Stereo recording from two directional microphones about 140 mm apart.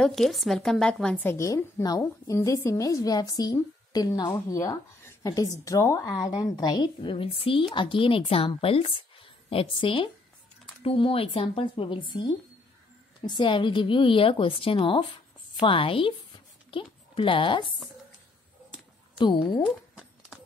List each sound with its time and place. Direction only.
0.0 s a woman's voice: centre (ahead or behind); by 17.7 s 35° left (ahead or behind)
19.1 s a woman's voice: 30° left (ahead or behind)